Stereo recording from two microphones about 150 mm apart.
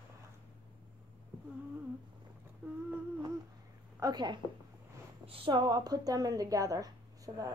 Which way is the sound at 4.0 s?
25° right (ahead or behind).